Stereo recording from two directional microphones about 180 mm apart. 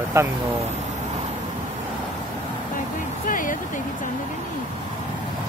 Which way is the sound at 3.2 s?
50° left (ahead or behind).